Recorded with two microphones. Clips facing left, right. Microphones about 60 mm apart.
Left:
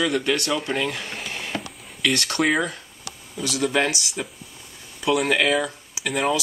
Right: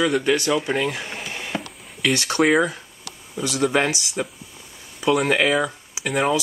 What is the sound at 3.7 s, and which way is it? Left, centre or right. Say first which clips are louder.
Speech: right 1 dB; right.